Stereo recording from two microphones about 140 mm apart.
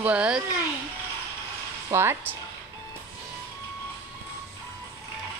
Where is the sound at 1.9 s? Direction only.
15° right (ahead or behind).